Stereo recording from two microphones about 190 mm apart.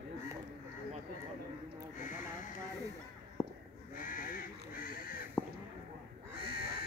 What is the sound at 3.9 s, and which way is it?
Goose, 45° left (ahead or behind).